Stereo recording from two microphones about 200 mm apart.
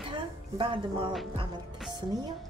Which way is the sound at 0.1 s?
25° right (ahead or behind).